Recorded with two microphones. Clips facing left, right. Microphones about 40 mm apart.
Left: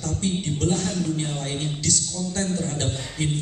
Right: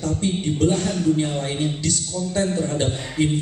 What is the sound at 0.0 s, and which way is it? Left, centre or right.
A man's voice, centre.